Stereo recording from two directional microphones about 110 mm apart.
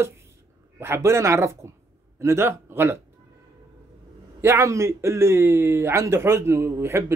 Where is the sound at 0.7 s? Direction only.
25° right (ahead or behind).